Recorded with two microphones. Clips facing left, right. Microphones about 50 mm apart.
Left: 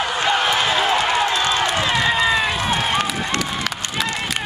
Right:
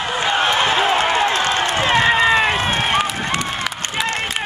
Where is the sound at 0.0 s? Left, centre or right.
Centre.